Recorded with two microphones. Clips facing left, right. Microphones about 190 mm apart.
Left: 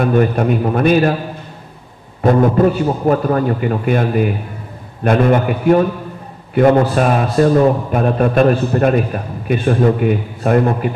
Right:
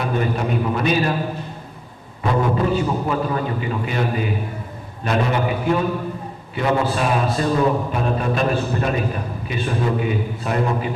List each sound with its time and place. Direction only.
0.0 s a man's voice: 55° left (ahead or behind)
2.2 s a man's voice: 50° left (ahead or behind)